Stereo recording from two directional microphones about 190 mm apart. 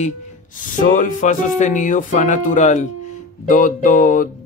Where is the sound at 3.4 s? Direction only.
45° left (ahead or behind).